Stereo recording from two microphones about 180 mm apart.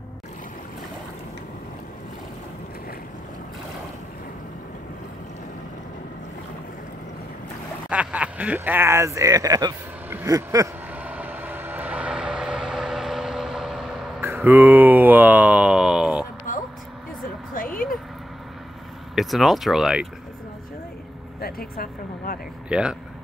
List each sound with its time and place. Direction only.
7.9 s speech: 5° right (ahead or behind)
10.0 s vehicle: 15° right (ahead or behind)
14.2 s a sound: 10° right (ahead or behind)
17.6 s a sound: 50° left (ahead or behind)
19.1 s speech: centre (ahead or behind)
21.4 s speech: 55° left (ahead or behind)
22.7 s speech: 5° right (ahead or behind)